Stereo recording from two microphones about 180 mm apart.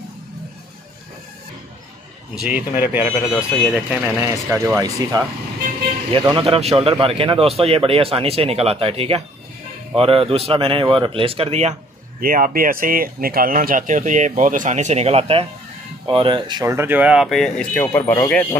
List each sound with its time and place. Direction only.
2.4 s speech: 10° right (ahead or behind)
6.1 s a man's voice: 30° right (ahead or behind)
12.2 s speech: 50° right (ahead or behind); by 18.6 s 10° left (ahead or behind)